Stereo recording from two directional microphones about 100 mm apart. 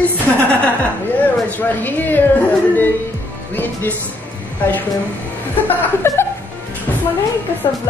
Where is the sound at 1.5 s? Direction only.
20° left (ahead or behind).